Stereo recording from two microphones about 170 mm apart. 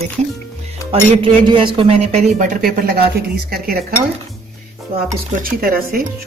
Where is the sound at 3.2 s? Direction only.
60° right (ahead or behind).